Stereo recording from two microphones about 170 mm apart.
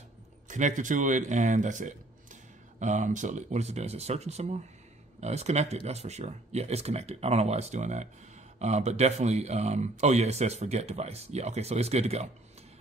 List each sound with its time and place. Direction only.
0.5 s speech: 45° right (ahead or behind)